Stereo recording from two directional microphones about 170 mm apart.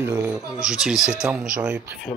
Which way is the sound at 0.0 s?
15° right (ahead or behind).